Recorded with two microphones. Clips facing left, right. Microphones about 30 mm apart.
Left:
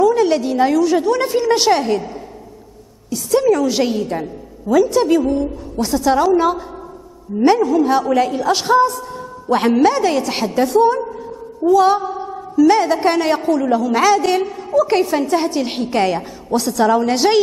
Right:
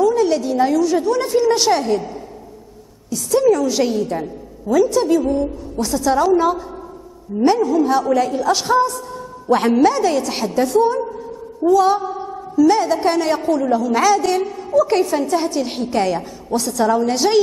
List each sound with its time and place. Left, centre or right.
0.0 s a woman's voice: left
3.3 s a woman's voice: centre
12.1 s a sound: centre
12.6 s a woman's voice: left